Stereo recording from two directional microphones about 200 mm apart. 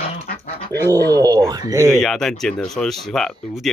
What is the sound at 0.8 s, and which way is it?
Speech, 20° right (ahead or behind).